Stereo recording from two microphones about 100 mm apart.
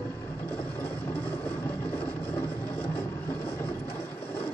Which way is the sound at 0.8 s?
20° left (ahead or behind).